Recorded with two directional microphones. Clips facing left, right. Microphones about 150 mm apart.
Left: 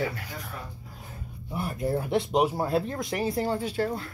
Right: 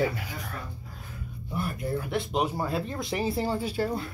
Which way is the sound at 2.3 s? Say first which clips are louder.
Left 4 dB; 20° left (ahead or behind).